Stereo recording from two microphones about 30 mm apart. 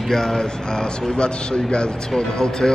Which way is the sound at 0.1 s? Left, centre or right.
Left.